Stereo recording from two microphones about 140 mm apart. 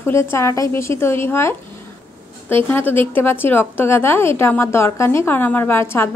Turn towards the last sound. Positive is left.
turn(degrees=15)  # may be behind; listen again after turning